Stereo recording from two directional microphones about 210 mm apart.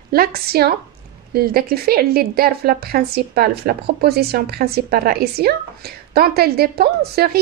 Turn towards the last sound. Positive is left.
turn(degrees=-50)  # may be behind; listen again after turning